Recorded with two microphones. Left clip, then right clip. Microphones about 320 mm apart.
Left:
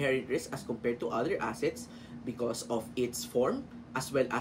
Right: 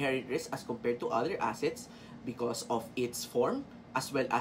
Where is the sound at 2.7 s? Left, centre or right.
Centre.